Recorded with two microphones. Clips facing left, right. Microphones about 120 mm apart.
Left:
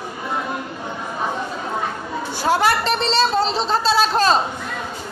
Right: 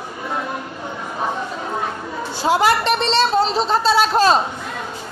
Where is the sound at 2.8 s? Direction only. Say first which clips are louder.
Right 2 dB; 35° left (ahead or behind).